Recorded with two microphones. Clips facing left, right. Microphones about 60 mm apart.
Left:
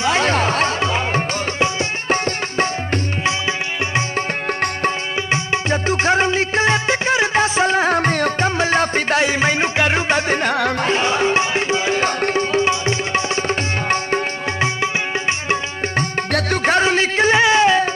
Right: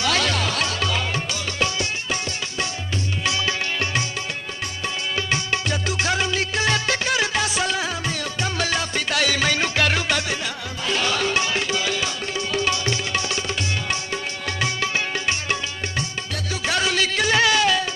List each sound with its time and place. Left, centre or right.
0.0 s music: left
4.5 s music: left
5.1 s music: left
10.5 s music: left
10.9 s music: left
12.0 s tabla: left
16.3 s music: left
16.6 s music: left